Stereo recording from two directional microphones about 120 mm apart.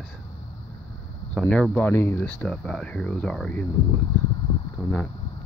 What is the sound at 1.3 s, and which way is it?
Speech, 10° left (ahead or behind).